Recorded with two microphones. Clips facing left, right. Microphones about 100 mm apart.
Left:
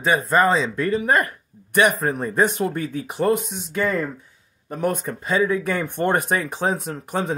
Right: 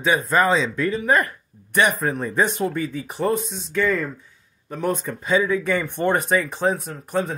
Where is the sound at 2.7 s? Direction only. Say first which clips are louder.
Even; 55° left (ahead or behind).